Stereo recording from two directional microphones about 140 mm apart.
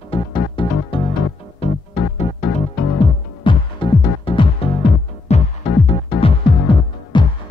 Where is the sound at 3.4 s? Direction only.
35° left (ahead or behind).